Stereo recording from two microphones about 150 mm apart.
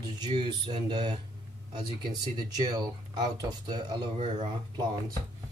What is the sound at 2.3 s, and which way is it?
Speech, 25° right (ahead or behind).